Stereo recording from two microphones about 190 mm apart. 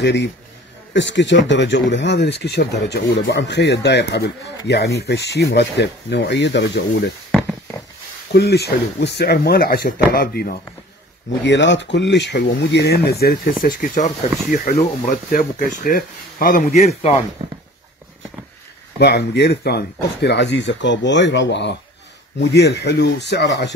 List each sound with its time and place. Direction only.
0.0 s speech: 65° left (ahead or behind)
8.3 s speech: 60° left (ahead or behind)
11.4 s speech: 70° left (ahead or behind); by 17.2 s 35° left (ahead or behind)
17.4 s speech: 30° right (ahead or behind)
18.9 s speech: 60° left (ahead or behind)